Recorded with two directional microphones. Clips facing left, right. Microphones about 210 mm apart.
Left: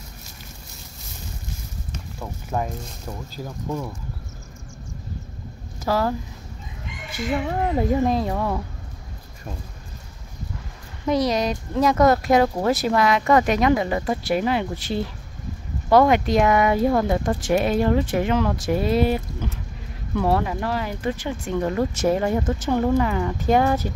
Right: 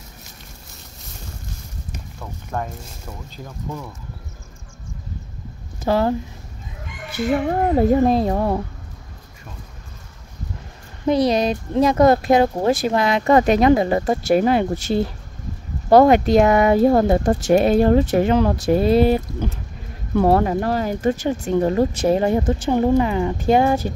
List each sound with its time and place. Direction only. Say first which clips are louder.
2.1 s speech: left 1 dB; 10° left (ahead or behind)
5.9 s speech: right 4 dB; 25° right (ahead or behind)
7.2 s speech: right 5 dB; 45° right (ahead or behind)
11.1 s speech: right 4 dB; 30° right (ahead or behind)
20.2 s speech: right 6 dB; 45° right (ahead or behind); by 23.9 s 25° right (ahead or behind)